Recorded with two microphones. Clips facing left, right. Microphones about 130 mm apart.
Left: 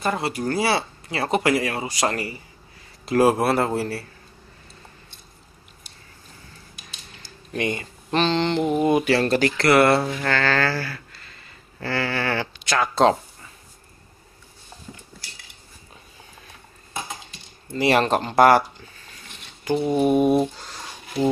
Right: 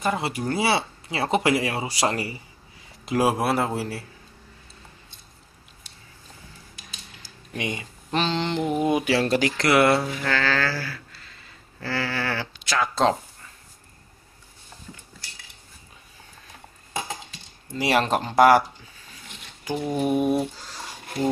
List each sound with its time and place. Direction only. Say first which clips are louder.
0.0 s speech: left 1 dB; 15° right (ahead or behind)
3.1 s a man's voice: left 4 dB; 5° right (ahead or behind)
7.2 s speech: left 5 dB; 10° right (ahead or behind)
17.7 s speech: left 3 dB; 5° right (ahead or behind)
19.8 s mantra: left 4 dB; 10° left (ahead or behind)